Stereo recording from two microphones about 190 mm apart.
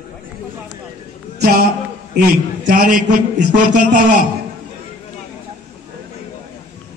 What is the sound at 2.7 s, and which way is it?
A man's voice, 45° right (ahead or behind).